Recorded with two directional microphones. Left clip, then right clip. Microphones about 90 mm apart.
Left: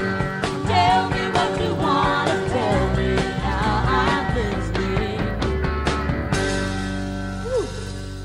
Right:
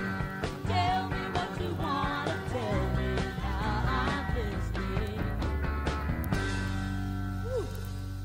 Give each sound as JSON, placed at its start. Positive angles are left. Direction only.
{"t": 0.0, "sound": "music", "side_deg": 35}